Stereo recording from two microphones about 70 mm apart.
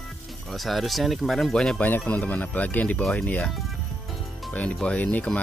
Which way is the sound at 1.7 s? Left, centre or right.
Left.